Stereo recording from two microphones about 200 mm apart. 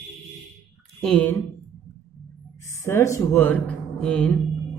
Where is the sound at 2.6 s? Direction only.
15° left (ahead or behind).